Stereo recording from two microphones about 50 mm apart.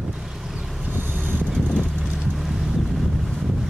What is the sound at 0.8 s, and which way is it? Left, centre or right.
Vehicle, right.